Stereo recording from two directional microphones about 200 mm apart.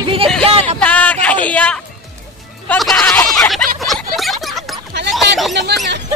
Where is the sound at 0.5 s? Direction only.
30° right (ahead or behind).